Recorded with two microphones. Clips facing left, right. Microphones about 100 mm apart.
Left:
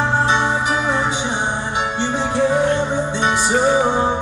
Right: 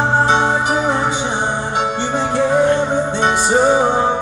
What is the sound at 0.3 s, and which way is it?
Music, 45° right (ahead or behind).